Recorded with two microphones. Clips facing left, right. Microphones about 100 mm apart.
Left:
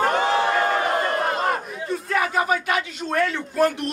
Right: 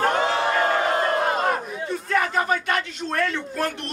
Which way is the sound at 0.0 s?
Centre (ahead or behind).